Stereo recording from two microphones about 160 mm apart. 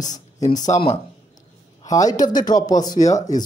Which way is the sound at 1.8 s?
20° left (ahead or behind).